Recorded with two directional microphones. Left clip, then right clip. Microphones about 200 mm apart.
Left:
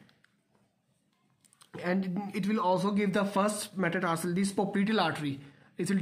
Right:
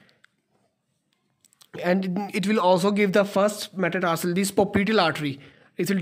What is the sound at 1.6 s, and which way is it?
Speech, 45° right (ahead or behind).